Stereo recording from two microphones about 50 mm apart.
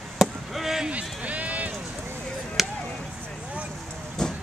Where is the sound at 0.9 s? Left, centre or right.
Right.